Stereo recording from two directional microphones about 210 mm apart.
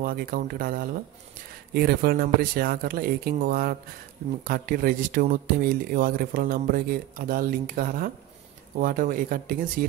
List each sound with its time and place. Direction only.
0.0 s speech: 45° right (ahead or behind)